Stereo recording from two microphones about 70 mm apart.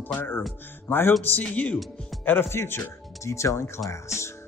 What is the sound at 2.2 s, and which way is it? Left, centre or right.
Speech, left.